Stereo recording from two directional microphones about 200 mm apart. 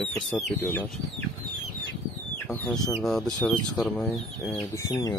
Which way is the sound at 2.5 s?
10° left (ahead or behind).